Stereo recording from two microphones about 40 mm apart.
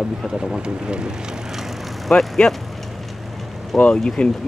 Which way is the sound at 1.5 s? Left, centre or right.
Centre.